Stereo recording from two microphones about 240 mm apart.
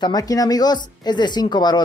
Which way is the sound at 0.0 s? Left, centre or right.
Centre.